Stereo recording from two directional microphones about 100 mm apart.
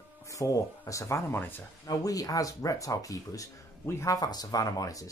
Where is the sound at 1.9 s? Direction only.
35° left (ahead or behind).